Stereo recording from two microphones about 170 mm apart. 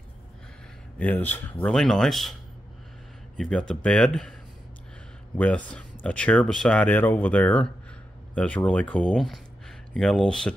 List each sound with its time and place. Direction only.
0.9 s speech: 10° left (ahead or behind)
3.3 s speech: 5° left (ahead or behind)